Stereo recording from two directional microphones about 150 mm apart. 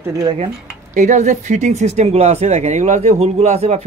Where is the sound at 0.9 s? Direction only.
55° right (ahead or behind).